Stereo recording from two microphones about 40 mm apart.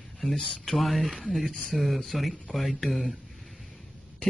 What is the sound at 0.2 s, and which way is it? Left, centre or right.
Speech, centre.